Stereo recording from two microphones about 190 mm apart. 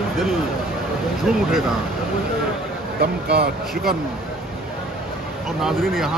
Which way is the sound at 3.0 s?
60° right (ahead or behind).